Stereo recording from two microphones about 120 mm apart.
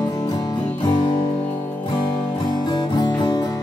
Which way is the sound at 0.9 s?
40° left (ahead or behind).